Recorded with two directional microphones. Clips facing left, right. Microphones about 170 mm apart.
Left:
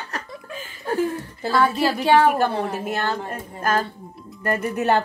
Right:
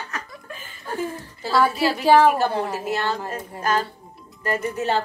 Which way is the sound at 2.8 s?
50° left (ahead or behind).